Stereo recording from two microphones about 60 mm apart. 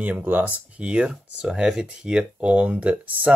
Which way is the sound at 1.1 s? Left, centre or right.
Centre.